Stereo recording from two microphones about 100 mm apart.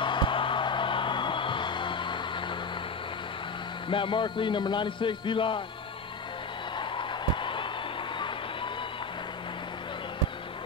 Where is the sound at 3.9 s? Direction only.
55° left (ahead or behind).